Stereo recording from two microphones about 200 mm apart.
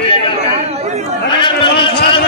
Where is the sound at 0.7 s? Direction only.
30° right (ahead or behind).